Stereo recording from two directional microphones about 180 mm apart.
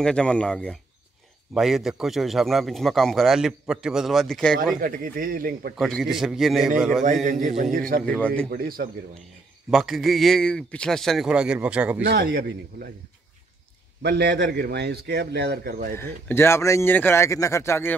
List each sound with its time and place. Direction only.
0.0 s a man's voice: 5° left (ahead or behind)
4.8 s speech: 50° right (ahead or behind)
5.8 s a man's voice: centre (ahead or behind)
7.2 s speech: 45° right (ahead or behind)
8.0 s speech: 5° left (ahead or behind)
8.5 s a man's voice: 55° right (ahead or behind)
9.7 s a man's voice: centre (ahead or behind)
12.0 s a man's voice: 65° right (ahead or behind)
14.0 s a man's voice: 65° right (ahead or behind); by 16.0 s 50° right (ahead or behind)
16.0 s speech: 15° left (ahead or behind)